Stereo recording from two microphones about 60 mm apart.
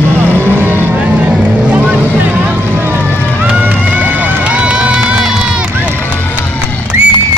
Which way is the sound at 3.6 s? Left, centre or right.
Right.